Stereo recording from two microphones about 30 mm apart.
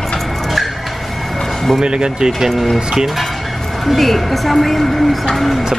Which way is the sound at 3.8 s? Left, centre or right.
Centre.